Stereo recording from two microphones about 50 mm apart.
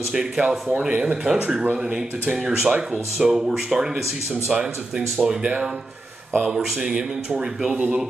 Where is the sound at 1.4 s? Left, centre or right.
Right.